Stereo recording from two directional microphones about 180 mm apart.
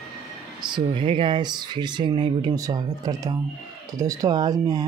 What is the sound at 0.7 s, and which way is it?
Speech, 25° right (ahead or behind).